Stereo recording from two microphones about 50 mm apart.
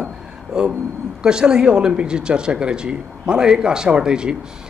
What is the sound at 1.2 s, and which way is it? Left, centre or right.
Speech, centre.